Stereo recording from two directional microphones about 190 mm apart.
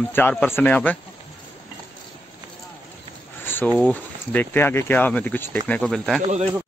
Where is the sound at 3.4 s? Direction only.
10° left (ahead or behind).